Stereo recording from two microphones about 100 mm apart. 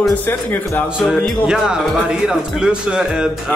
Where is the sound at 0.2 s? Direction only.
20° left (ahead or behind).